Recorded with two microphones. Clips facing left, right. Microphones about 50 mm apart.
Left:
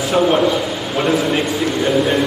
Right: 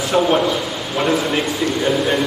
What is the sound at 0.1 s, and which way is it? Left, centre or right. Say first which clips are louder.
A man's voice: left 2 dB; centre.